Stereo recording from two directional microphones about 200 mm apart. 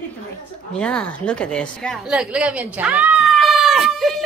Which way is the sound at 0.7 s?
5° left (ahead or behind).